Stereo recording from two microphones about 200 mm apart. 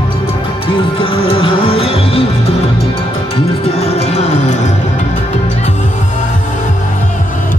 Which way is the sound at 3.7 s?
30° left (ahead or behind).